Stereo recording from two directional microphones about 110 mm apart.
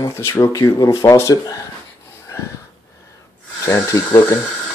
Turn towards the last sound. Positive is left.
turn(degrees=25)  # may be behind; listen again after turning